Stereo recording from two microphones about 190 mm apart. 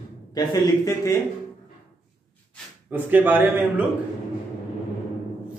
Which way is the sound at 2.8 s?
10° right (ahead or behind).